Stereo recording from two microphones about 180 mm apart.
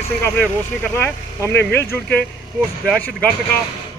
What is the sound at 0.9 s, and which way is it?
Speech, 15° left (ahead or behind).